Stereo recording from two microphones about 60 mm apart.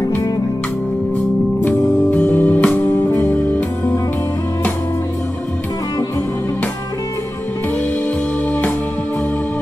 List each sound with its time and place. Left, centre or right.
2.2 s music: left
2.8 s music: left
3.3 s music: left